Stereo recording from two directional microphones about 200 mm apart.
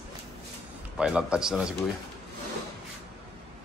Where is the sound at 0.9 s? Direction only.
5° right (ahead or behind).